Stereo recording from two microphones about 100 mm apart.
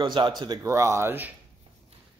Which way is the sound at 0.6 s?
30° right (ahead or behind).